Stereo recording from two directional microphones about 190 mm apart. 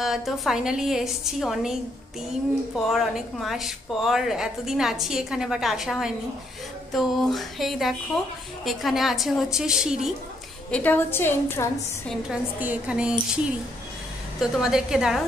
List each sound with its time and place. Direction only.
0.0 s speech: centre (ahead or behind)
10.7 s a woman's voice: 10° left (ahead or behind)
12.1 s speech: 5° right (ahead or behind)
14.4 s speech: 5° right (ahead or behind)